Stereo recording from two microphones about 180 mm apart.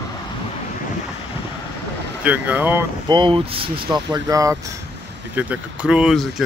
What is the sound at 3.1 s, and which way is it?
Speech, 25° right (ahead or behind).